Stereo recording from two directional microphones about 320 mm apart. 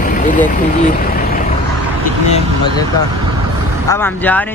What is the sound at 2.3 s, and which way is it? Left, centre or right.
Speech, centre.